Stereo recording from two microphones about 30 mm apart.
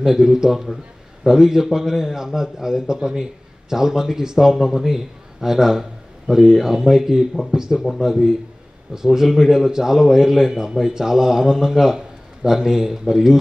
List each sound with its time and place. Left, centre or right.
0.0 s a man's voice: centre